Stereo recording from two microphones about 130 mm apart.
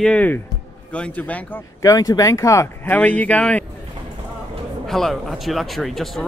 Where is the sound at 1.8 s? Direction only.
30° left (ahead or behind).